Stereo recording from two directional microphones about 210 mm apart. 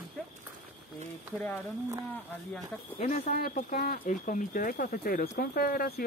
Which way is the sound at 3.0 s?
35° left (ahead or behind).